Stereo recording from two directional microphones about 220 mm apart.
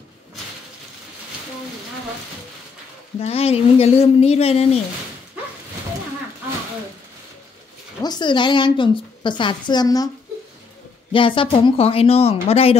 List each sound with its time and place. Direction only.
3.2 s a woman's voice: 25° left (ahead or behind)
8.0 s a woman's voice: 20° left (ahead or behind)
11.1 s a woman's voice: 25° left (ahead or behind)